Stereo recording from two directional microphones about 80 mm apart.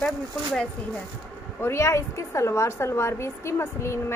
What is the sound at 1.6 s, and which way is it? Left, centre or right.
A woman's voice, left.